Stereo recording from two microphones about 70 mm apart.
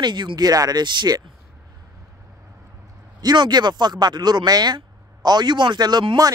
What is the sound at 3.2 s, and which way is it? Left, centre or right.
Speech, right.